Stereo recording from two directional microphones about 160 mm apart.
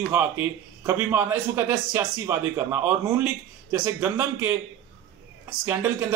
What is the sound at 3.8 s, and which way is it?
Speech, 15° right (ahead or behind).